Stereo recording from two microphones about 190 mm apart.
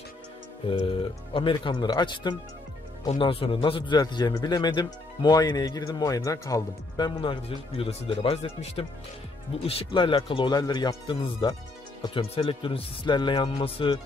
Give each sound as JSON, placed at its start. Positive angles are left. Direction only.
{"t": 0.7, "sound": "a man's voice", "side_deg": 25}